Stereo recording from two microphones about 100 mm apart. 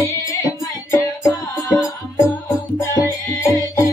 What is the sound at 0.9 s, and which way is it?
Music, 35° left (ahead or behind).